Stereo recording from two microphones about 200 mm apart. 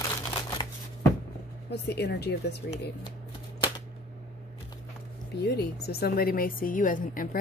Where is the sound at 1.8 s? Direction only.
55° left (ahead or behind).